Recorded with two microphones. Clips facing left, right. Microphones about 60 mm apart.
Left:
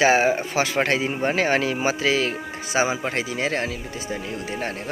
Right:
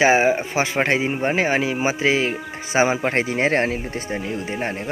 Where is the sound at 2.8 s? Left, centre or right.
Right.